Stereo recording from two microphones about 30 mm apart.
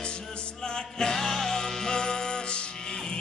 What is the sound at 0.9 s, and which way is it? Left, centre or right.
Music, centre.